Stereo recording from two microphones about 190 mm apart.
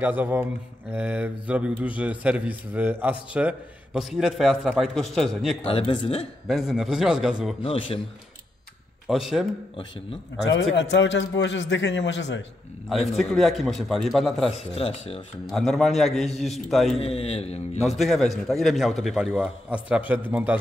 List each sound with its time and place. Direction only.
0.0 s speech: 10° right (ahead or behind)
5.7 s a man's voice: 30° left (ahead or behind)
6.4 s a man's voice: centre (ahead or behind)
7.6 s a man's voice: 30° left (ahead or behind)
9.0 s a man's voice: centre (ahead or behind)
10.4 s a man's voice: 70° left (ahead or behind)
13.1 s a man's voice: centre (ahead or behind)
14.8 s a man's voice: 30° left (ahead or behind)
15.4 s a man's voice: centre (ahead or behind)
16.9 s a man's voice: 30° left (ahead or behind)
17.8 s a man's voice: centre (ahead or behind)